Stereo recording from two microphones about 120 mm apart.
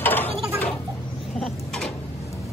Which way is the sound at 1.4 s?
5° left (ahead or behind).